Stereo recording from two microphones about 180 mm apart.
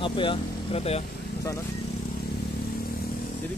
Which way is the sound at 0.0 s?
30° left (ahead or behind).